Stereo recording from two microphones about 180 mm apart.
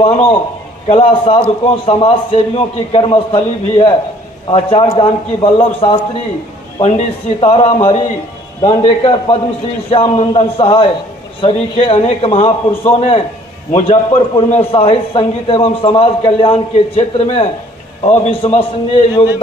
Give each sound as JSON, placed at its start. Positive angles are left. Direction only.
{"t": 0.0, "sound": "a man's voice", "side_deg": 30}